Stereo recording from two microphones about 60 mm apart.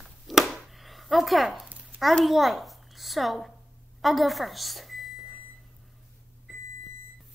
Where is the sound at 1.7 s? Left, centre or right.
Right.